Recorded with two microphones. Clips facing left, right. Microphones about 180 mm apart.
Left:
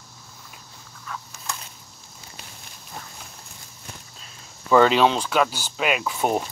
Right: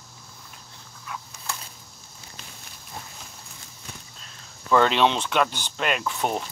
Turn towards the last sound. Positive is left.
turn(degrees=5)  # may be behind; listen again after turning